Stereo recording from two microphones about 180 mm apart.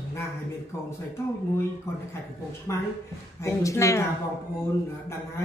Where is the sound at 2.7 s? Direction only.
15° left (ahead or behind).